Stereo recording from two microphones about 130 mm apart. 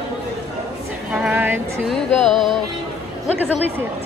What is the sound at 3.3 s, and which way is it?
Speech, 15° right (ahead or behind).